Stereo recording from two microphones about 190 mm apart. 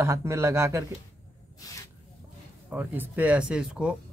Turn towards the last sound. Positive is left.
turn(degrees=-5)  # may be behind; listen again after turning